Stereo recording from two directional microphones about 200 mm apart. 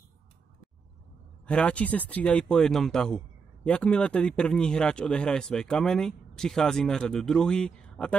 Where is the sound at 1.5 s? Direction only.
5° left (ahead or behind).